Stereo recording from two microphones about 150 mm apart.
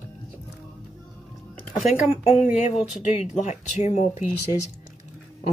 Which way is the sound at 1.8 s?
50° left (ahead or behind).